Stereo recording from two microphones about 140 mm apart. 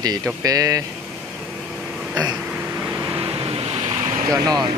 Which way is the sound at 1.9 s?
5° right (ahead or behind).